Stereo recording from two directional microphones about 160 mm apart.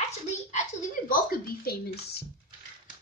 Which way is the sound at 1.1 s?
65° left (ahead or behind).